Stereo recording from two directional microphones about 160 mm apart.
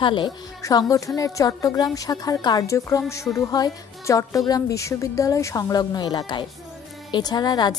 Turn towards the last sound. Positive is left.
turn(degrees=25)  # may be behind; listen again after turning